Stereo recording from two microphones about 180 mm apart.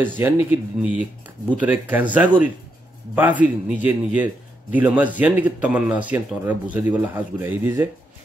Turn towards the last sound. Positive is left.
turn(degrees=-10)  # may be behind; listen again after turning